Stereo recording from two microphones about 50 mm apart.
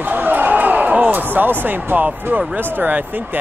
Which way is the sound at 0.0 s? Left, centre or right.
Right.